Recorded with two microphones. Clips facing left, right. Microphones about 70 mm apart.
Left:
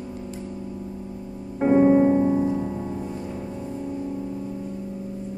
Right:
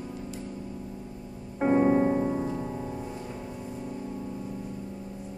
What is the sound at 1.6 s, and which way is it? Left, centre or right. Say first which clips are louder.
Music: left 6 dB; centre.